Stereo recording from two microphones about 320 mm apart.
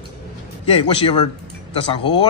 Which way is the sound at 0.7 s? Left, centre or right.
Centre.